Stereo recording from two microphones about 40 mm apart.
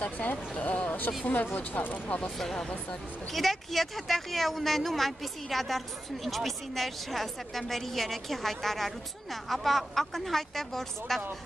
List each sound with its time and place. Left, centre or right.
0.2 s speech: left
0.7 s a sound: left
1.2 s speech: left
2.0 s speech: left
2.3 s speech: centre